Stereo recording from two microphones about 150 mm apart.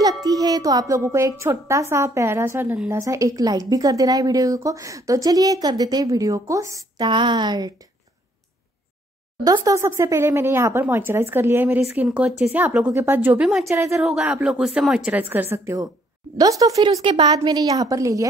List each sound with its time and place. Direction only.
0.0 s a woman's voice: 25° right (ahead or behind)
9.4 s a woman's voice: 25° right (ahead or behind)
14.0 s a woman's voice: 5° right (ahead or behind); by 18.2 s 20° right (ahead or behind)